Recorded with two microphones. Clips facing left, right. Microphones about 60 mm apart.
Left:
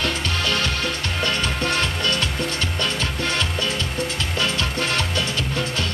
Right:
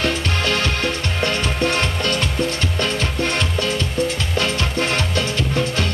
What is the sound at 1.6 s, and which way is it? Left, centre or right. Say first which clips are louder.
Music: right 2 dB; right.